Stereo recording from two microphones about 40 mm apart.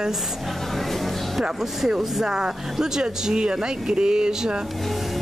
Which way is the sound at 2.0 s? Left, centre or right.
Centre.